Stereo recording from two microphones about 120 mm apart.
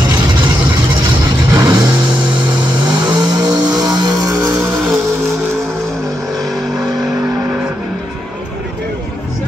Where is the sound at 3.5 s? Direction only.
35° right (ahead or behind).